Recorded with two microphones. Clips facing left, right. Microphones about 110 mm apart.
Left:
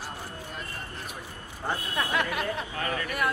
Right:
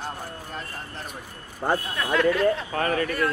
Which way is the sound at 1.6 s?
50° right (ahead or behind).